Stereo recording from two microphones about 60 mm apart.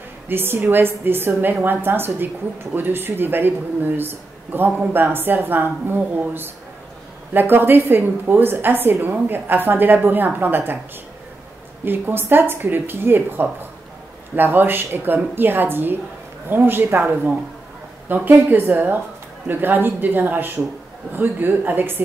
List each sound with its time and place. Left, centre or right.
0.3 s a woman's voice: right
11.8 s a woman's voice: right